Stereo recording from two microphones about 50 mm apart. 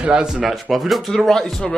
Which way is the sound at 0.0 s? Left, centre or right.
Centre.